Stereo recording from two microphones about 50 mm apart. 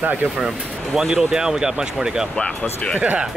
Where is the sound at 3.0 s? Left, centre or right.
Right.